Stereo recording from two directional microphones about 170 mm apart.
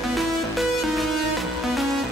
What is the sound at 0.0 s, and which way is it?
Music, centre (ahead or behind).